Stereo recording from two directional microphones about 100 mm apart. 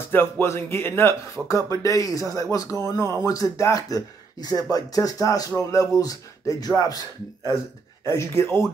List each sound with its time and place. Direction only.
0.1 s speech: 25° left (ahead or behind)
8.0 s speech: 30° left (ahead or behind)